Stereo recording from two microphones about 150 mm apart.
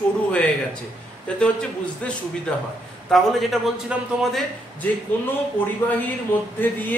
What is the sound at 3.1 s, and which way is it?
A man's voice, centre (ahead or behind).